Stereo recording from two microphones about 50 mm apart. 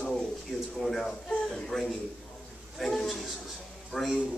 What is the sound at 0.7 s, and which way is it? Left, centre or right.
A man's voice, centre.